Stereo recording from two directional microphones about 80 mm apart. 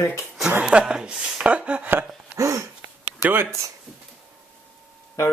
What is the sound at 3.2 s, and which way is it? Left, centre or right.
Speech, right.